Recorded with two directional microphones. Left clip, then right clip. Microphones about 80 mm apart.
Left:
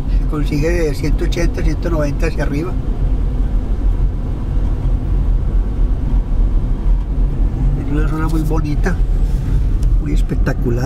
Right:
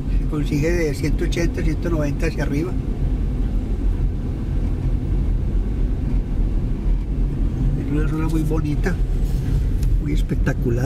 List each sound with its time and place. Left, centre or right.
0.3 s speech: centre
7.9 s speech: centre